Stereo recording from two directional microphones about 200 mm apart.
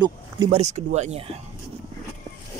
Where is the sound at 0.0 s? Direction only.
20° right (ahead or behind).